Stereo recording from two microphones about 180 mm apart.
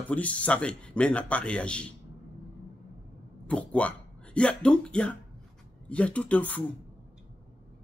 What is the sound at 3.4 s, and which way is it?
A man's voice, 5° left (ahead or behind).